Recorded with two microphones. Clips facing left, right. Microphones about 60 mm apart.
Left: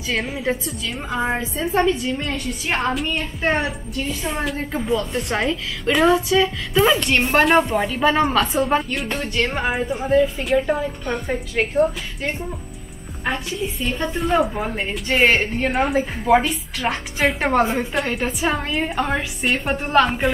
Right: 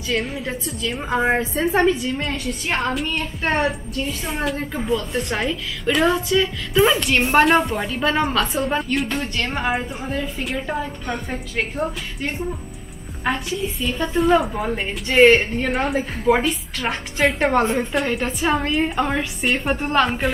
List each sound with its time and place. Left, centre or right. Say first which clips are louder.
0.1 s a woman's voice: left 1 dB; centre
1.1 s a woman's voice: right 4 dB; right
2.0 s a woman's voice: even; centre
13.2 s a woman's voice: right 1 dB; centre